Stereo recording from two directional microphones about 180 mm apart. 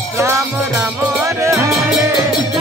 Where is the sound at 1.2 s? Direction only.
15° right (ahead or behind).